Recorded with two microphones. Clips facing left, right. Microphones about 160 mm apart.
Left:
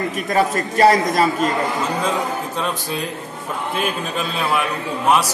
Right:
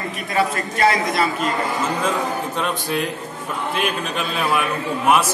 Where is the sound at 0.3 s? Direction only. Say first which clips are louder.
Left 2 dB; 40° left (ahead or behind).